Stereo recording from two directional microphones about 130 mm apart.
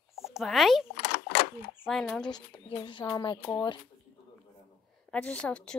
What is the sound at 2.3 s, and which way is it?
Speech, 40° left (ahead or behind).